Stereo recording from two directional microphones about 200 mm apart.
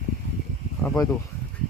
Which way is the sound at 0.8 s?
15° left (ahead or behind).